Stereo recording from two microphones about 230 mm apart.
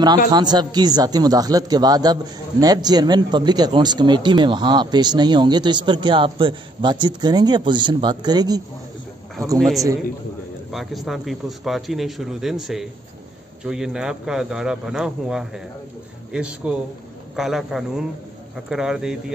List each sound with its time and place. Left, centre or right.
0.3 s a man's voice: centre
9.6 s speech: centre